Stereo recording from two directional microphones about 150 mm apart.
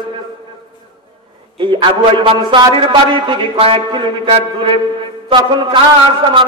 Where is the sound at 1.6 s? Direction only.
30° right (ahead or behind).